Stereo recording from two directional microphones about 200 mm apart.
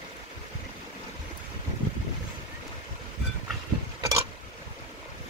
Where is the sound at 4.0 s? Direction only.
15° right (ahead or behind).